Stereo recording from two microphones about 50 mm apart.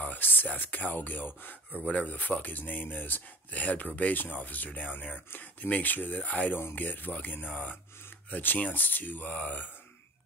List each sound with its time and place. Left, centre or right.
0.0 s speech: left